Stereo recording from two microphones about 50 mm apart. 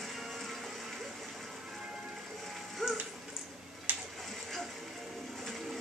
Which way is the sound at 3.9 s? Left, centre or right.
Right.